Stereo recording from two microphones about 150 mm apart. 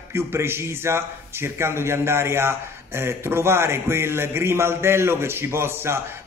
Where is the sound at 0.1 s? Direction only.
15° right (ahead or behind).